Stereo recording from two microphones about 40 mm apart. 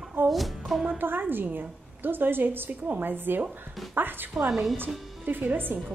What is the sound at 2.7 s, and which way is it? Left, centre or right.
A woman's voice, right.